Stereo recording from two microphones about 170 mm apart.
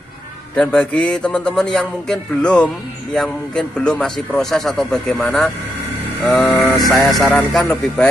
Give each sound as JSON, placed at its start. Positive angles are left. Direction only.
{"t": 0.6, "sound": "a man's voice", "side_deg": 5}
{"t": 6.4, "sound": "mantra", "side_deg": 20}
{"t": 6.9, "sound": "a man's voice", "side_deg": 0}